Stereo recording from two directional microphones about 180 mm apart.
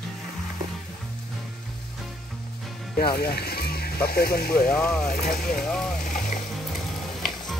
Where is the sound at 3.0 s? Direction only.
60° left (ahead or behind).